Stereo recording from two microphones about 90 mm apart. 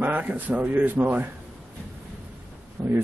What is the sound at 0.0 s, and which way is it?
Speech, 20° right (ahead or behind).